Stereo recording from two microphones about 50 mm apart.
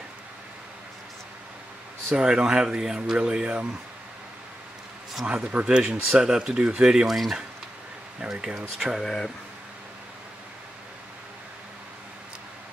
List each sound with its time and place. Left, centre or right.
2.1 s speech: centre
5.2 s speech: right
7.1 s speech: centre
8.2 s speech: centre
9.0 s speech: centre